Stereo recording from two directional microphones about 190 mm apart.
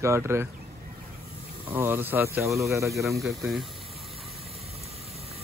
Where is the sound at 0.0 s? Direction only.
15° right (ahead or behind).